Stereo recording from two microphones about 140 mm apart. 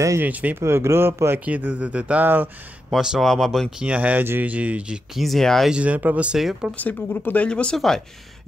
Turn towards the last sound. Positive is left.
turn(degrees=5)  # may be behind; listen again after turning